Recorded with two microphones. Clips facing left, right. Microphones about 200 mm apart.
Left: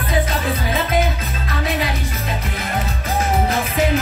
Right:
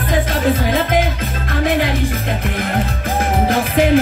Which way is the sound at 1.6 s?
55° right (ahead or behind).